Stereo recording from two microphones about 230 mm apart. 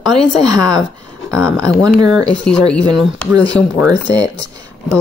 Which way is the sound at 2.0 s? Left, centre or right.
Centre.